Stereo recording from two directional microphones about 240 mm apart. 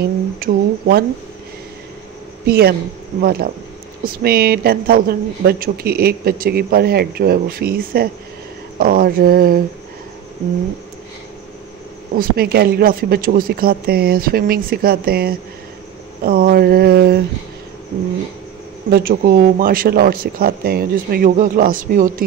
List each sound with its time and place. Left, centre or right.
0.4 s a woman's voice: right
2.4 s a woman's voice: right
12.2 s a woman's voice: right
18.9 s a woman's voice: right